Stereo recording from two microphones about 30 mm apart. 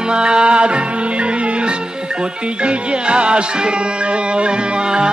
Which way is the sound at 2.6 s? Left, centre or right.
Right.